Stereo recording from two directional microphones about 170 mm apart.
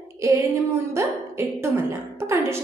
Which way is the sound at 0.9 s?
20° right (ahead or behind).